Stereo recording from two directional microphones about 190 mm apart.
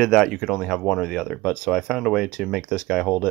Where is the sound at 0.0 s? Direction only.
Centre (ahead or behind).